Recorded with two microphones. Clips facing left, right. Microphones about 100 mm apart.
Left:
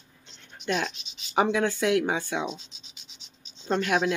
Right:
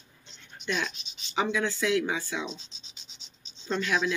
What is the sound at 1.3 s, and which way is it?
Speech, 55° left (ahead or behind).